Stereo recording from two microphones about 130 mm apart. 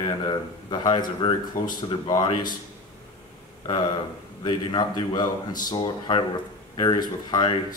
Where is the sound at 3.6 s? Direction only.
35° left (ahead or behind).